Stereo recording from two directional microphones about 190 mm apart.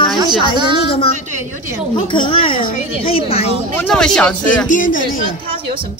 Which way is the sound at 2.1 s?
25° left (ahead or behind).